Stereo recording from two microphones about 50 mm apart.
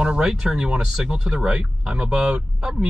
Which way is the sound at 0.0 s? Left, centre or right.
Centre.